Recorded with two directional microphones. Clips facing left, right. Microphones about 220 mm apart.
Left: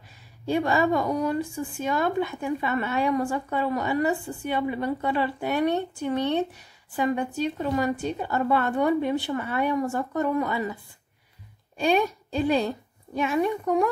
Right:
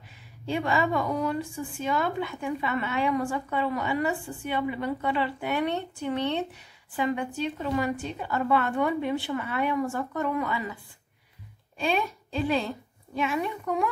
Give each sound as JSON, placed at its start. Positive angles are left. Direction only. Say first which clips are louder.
{"t": 0.5, "sound": "a woman's voice", "louder": "left 4 dB", "side_deg": 40}